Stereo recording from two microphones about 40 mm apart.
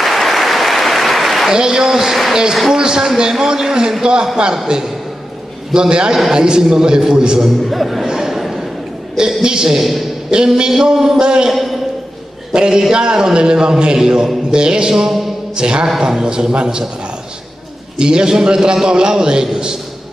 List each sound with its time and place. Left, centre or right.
0.0 s applause: centre
1.5 s a man's voice: centre
7.6 s speech: centre
8.1 s a sound: centre
9.4 s a man's voice: centre
11.5 s a sound: centre
12.5 s a man's voice: right
17.9 s a man's voice: right